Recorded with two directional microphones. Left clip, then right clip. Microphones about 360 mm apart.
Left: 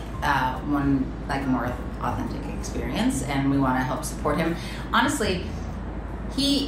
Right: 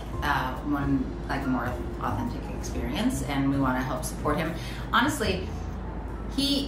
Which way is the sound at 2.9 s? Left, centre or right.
Centre.